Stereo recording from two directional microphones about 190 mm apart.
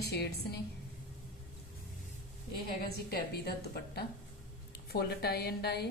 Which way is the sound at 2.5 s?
55° left (ahead or behind).